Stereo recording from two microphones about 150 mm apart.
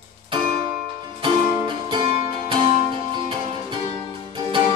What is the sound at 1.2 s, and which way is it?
Music, 35° right (ahead or behind).